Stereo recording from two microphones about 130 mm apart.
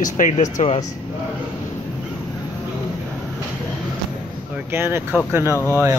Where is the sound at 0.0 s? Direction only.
80° left.